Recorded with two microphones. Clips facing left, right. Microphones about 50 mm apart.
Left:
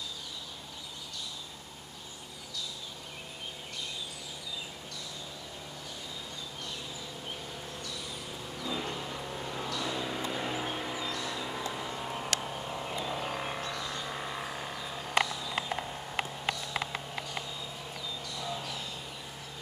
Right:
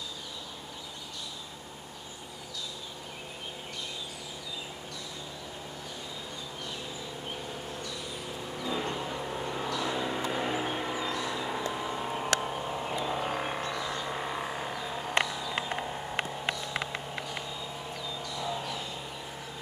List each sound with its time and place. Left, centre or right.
8.6 s vehicle: centre
12.4 s a sound: centre
18.2 s vehicle: centre